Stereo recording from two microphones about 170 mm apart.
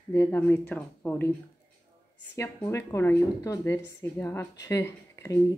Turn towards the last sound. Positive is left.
turn(degrees=15)  # may be behind; listen again after turning